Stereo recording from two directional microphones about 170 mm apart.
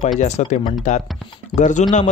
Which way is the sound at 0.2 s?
45° left (ahead or behind).